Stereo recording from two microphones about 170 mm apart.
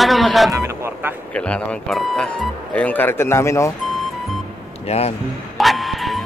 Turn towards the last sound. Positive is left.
turn(degrees=0)  # may be behind; listen again after turning